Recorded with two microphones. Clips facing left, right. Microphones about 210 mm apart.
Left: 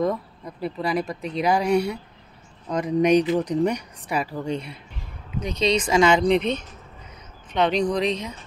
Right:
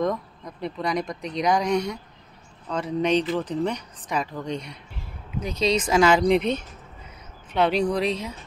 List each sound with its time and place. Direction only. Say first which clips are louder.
0.0 s speech: left 1 dB; 5° left (ahead or behind)